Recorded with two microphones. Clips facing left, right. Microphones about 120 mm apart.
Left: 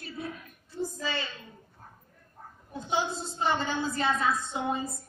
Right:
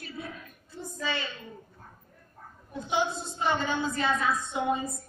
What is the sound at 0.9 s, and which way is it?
Speech, 35° left (ahead or behind).